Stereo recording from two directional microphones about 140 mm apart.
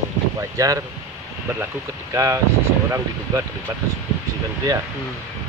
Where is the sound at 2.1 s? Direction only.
20° right (ahead or behind).